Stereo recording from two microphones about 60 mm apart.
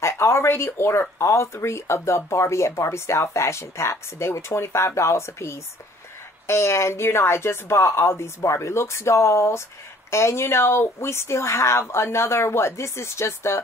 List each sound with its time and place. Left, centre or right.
0.0 s speech: left